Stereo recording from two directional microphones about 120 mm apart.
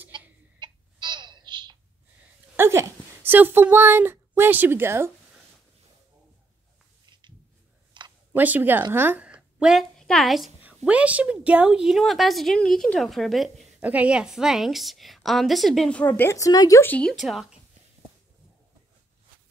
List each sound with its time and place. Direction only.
0.6 s a sound: 40° right (ahead or behind)
2.5 s speech: 20° right (ahead or behind)
7.1 s a sound: 40° right (ahead or behind)
8.4 s a woman's voice: 15° right (ahead or behind)
10.6 s a woman's voice: 10° right (ahead or behind)
13.7 s a woman's voice: 10° right (ahead or behind); by 16.8 s 30° left (ahead or behind)
16.8 s a woman's voice: 10° left (ahead or behind)